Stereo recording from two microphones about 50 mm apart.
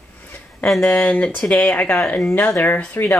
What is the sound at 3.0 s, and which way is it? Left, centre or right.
Speech, left.